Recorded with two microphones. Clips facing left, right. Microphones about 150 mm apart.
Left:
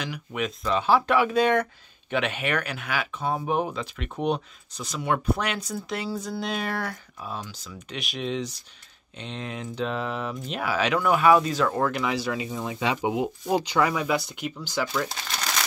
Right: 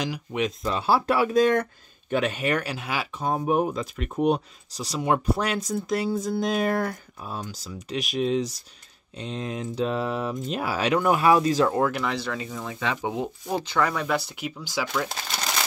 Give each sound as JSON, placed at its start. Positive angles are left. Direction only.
{"t": 0.0, "sound": "speech", "side_deg": -35}
{"t": 11.8, "sound": "speech", "side_deg": 0}